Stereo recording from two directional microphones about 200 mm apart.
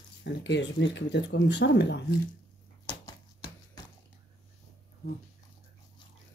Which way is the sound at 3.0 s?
20° left (ahead or behind).